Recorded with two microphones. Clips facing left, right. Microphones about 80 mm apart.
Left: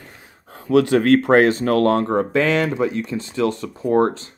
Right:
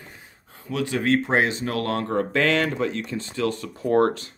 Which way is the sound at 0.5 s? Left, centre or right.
Left.